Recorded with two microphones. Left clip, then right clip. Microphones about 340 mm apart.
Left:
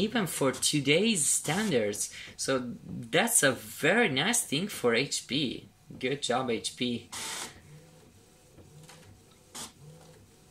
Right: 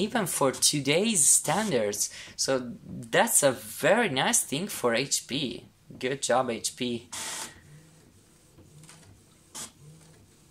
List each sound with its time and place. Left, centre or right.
0.0 s speech: centre